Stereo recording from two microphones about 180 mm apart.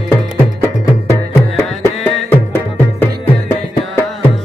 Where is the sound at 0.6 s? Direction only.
15° left (ahead or behind).